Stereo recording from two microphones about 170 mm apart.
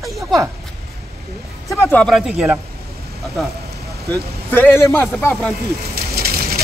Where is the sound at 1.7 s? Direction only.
15° left (ahead or behind).